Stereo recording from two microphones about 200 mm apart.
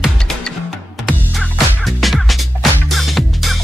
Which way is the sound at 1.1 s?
Centre (ahead or behind).